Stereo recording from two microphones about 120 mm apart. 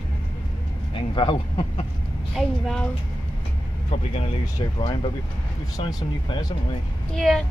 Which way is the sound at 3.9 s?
55° left (ahead or behind).